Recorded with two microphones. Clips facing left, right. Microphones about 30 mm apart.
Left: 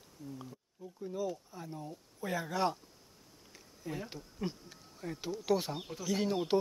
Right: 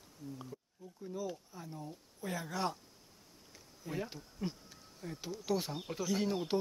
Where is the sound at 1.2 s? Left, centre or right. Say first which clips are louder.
Left 4 dB; centre.